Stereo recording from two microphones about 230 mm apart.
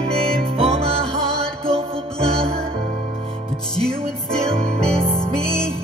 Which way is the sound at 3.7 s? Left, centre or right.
Centre.